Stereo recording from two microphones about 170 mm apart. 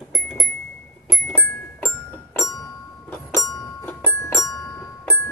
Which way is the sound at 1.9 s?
20° left (ahead or behind).